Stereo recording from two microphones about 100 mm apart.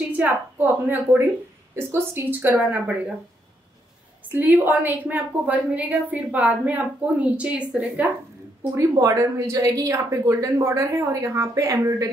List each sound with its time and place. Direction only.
0.1 s a woman's voice: 20° right (ahead or behind)
4.3 s a woman's voice: 20° right (ahead or behind)
9.0 s speech: 30° right (ahead or behind)